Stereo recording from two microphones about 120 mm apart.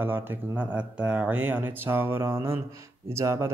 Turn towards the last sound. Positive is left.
turn(degrees=-25)  # may be behind; listen again after turning